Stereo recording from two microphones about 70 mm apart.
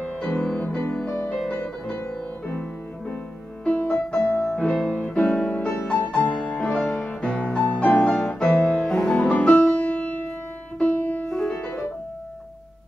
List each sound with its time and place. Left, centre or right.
0.0 s music: centre
3.6 s music: centre
4.6 s music: centre
5.0 s music: centre
5.7 s music: left
6.1 s music: centre
9.2 s piano: centre
10.8 s music: centre
11.2 s music: centre